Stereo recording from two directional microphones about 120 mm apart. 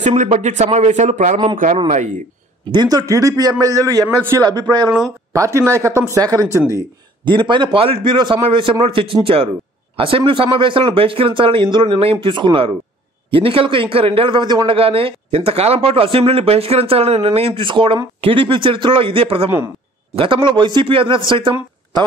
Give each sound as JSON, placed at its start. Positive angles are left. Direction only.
{"t": 0.0, "sound": "speech", "side_deg": -70}
{"t": 2.7, "sound": "a man's voice", "side_deg": -35}
{"t": 5.3, "sound": "a man's voice", "side_deg": -25}
{"t": 14.8, "sound": "speech", "side_deg": -50}